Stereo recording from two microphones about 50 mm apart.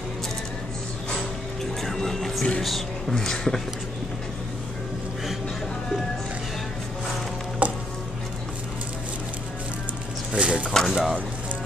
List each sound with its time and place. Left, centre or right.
1.8 s music: centre
2.6 s speech: centre
3.2 s speech: centre
7.6 s music: right
10.3 s a sound: right
10.9 s speech: centre